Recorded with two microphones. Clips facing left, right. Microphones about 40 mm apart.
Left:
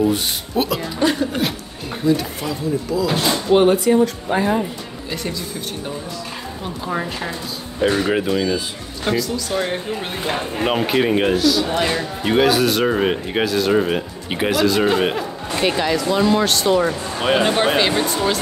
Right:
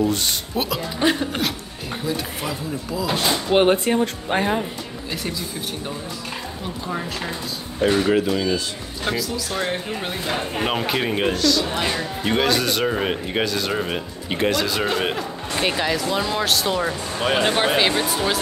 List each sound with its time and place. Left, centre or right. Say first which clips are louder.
0.6 s speech: left 5 dB; centre
0.9 s speech: left 1 dB; right
2.0 s speech: left 8 dB; centre
3.1 s speech: left 1 dB; centre
3.7 s speech: left 5 dB; right
6.9 s speech: left 4 dB; centre